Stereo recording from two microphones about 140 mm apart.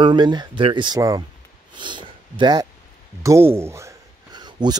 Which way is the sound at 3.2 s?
20° right (ahead or behind).